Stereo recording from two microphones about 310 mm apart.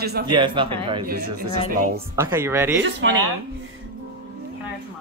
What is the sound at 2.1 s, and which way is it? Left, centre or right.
Speech, centre.